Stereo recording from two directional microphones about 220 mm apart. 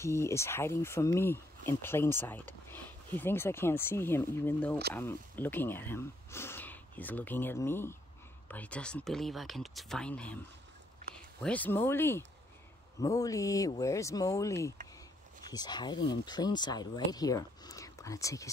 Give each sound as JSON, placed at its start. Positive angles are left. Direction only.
{"t": 0.0, "sound": "speech", "side_deg": 10}
{"t": 11.4, "sound": "speech", "side_deg": 5}